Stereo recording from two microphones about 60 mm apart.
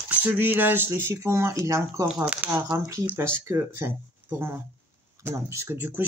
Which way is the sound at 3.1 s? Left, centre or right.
Right.